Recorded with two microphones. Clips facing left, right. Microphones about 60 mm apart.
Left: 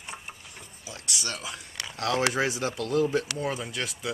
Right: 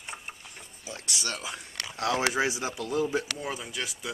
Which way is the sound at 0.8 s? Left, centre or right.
Right.